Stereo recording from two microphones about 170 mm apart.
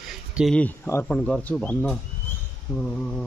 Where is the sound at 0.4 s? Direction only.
5° left (ahead or behind).